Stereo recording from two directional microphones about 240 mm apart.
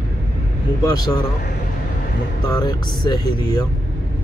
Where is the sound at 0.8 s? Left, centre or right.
Centre.